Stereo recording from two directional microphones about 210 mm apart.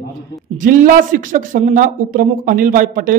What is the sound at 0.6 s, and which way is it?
A man's voice, 40° right (ahead or behind).